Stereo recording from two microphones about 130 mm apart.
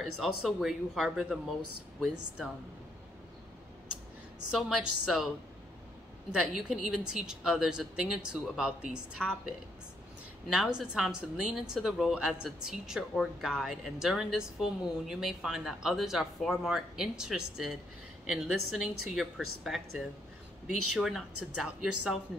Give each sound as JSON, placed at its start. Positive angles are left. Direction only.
{"t": 0.0, "sound": "a woman's voice", "side_deg": 0}
{"t": 4.6, "sound": "a woman's voice", "side_deg": -5}
{"t": 6.3, "sound": "a woman's voice", "side_deg": -5}
{"t": 10.5, "sound": "a woman's voice", "side_deg": -5}